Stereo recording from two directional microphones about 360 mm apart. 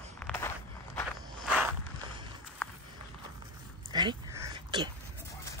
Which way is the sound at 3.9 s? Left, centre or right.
Centre.